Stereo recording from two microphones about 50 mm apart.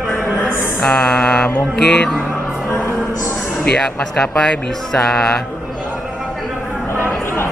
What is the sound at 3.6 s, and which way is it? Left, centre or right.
Speech, centre.